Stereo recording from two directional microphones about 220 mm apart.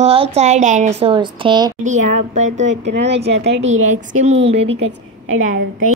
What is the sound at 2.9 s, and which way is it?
Speech, 50° right (ahead or behind).